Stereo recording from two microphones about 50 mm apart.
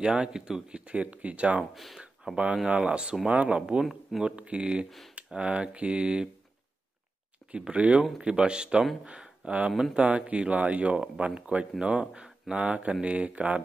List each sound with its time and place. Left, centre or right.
0.0 s speech: centre
2.3 s speech: centre
7.5 s speech: right
12.5 s speech: right